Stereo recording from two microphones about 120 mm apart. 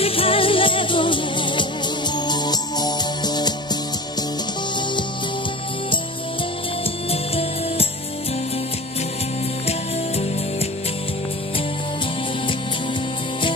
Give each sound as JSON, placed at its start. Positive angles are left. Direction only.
{"t": 0.0, "sound": "music", "side_deg": 50}
{"t": 7.1, "sound": "music", "side_deg": 55}
{"t": 9.7, "sound": "music", "side_deg": 60}